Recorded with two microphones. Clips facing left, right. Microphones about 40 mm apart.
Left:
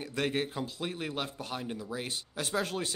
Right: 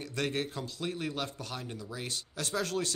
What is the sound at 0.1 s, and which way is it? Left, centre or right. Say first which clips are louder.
Speech: left 2 dB; centre.